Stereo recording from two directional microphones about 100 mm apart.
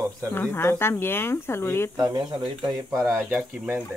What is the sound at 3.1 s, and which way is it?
Speech, 15° right (ahead or behind).